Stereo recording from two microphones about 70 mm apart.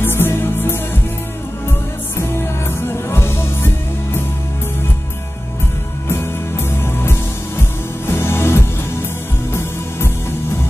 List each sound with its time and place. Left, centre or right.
0.0 s music: left
6.0 s music: left